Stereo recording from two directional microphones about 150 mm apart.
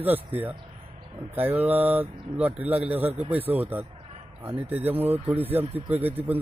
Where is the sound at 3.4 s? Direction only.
10° right (ahead or behind).